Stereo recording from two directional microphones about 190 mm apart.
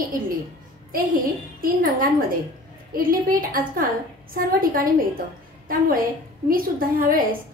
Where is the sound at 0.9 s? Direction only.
50° right (ahead or behind).